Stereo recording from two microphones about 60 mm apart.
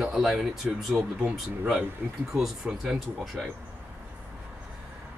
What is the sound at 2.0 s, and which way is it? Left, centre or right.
Speech, right.